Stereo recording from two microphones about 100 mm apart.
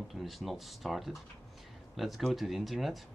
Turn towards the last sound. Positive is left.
turn(degrees=0)  # may be behind; listen again after turning